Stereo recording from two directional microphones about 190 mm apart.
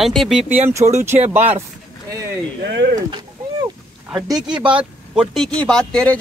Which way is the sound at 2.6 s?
60° right (ahead or behind).